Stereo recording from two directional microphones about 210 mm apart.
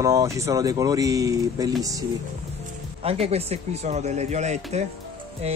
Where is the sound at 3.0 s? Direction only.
30° right (ahead or behind).